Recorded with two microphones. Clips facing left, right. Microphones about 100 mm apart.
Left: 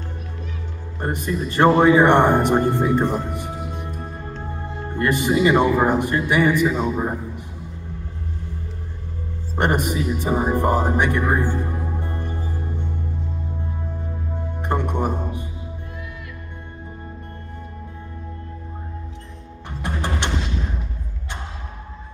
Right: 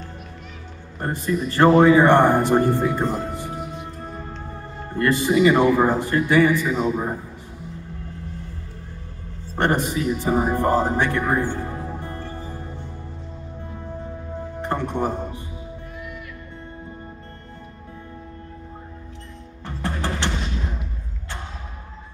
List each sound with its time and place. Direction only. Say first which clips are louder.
1.0 s speech: right 1 dB; 20° left (ahead or behind)
3.0 s music: left 2 dB; 20° left (ahead or behind)
4.9 s speech: right 1 dB; 20° left (ahead or behind)
9.6 s speech: even; 15° left (ahead or behind)
14.6 s music: left 1 dB; 15° left (ahead or behind)
19.8 s music: even; 15° left (ahead or behind)